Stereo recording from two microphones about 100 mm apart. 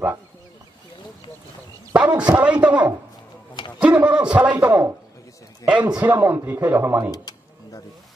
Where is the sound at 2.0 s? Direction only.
10° right (ahead or behind).